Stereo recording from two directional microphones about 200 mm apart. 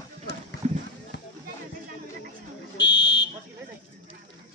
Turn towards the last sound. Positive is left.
turn(degrees=60)  # may be behind; listen again after turning